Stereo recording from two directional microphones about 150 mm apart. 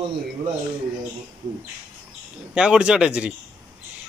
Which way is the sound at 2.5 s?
5° right (ahead or behind).